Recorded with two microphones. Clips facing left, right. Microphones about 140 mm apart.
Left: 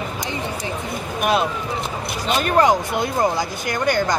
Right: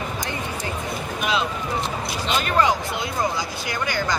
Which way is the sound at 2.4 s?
45° left (ahead or behind).